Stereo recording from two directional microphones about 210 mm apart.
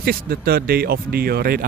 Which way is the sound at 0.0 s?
45° right (ahead or behind).